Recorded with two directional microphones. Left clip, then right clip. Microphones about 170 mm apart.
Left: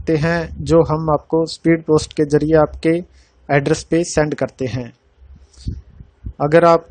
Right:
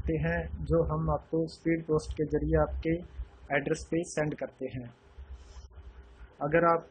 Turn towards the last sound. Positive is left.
turn(degrees=55)  # may be behind; listen again after turning